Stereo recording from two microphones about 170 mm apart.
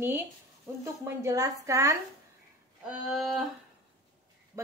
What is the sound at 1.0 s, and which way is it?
Speech, 20° right (ahead or behind).